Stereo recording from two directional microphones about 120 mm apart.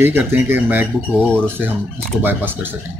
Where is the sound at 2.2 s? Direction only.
15° right (ahead or behind).